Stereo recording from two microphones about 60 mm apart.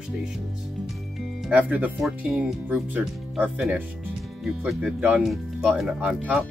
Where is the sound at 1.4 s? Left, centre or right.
Right.